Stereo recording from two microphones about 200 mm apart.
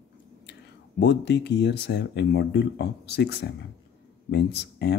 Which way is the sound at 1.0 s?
55° left (ahead or behind).